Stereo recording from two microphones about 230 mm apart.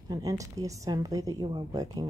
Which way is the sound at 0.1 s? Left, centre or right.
Centre.